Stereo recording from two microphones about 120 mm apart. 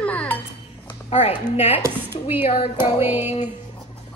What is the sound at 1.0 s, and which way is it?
A woman's voice, 65° left (ahead or behind).